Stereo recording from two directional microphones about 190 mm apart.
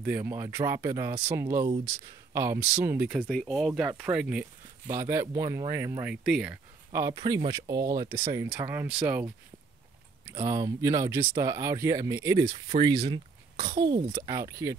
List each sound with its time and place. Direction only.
0.0 s speech: 10° right (ahead or behind)